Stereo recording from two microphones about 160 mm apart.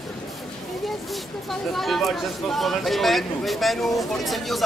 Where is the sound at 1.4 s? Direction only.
Centre (ahead or behind).